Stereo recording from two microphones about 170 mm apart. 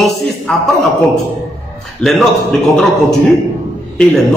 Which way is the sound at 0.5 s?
5° left (ahead or behind).